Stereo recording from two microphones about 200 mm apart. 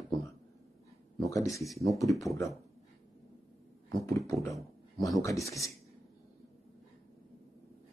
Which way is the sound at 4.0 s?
15° left (ahead or behind).